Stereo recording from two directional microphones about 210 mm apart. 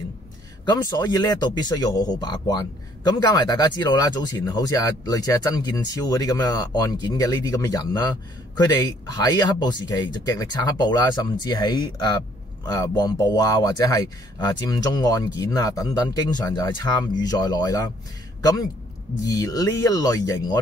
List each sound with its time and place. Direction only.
0.7 s speech: 20° left (ahead or behind)
19.2 s speech: 15° left (ahead or behind)